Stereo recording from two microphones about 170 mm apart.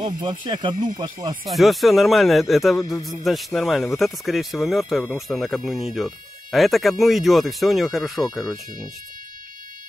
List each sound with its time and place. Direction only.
0.0 s speech: 25° right (ahead or behind)
1.5 s speech: centre (ahead or behind)
2.8 s speech: 20° left (ahead or behind)
3.1 s speech: centre (ahead or behind)